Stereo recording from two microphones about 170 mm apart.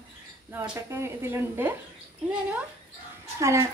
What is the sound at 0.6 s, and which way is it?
Speech, 15° right (ahead or behind).